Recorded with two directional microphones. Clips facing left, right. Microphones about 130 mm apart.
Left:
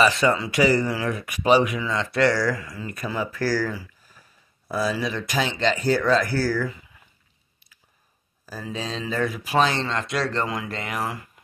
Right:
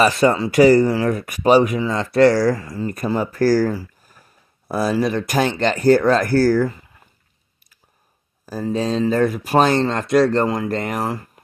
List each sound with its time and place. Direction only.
0.0 s speech: 45° right (ahead or behind)
8.5 s speech: 40° right (ahead or behind)